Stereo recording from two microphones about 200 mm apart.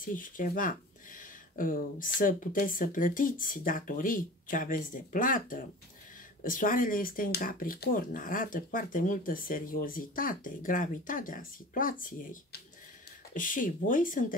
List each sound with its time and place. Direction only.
0.0 s speech: 40° left (ahead or behind)